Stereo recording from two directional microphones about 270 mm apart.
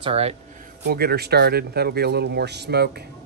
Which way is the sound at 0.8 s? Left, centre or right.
Right.